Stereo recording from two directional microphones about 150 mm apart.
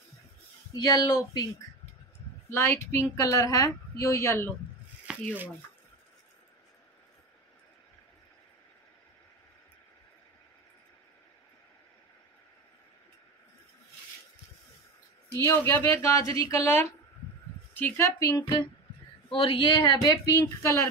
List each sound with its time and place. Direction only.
0.8 s speech: 25° left (ahead or behind)
2.5 s speech: 15° left (ahead or behind)
5.1 s a sound: 5° right (ahead or behind)
15.3 s speech: 20° left (ahead or behind)
19.2 s speech: 35° left (ahead or behind); by 20.9 s 15° left (ahead or behind)